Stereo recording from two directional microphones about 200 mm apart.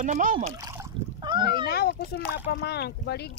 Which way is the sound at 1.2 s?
20° right (ahead or behind).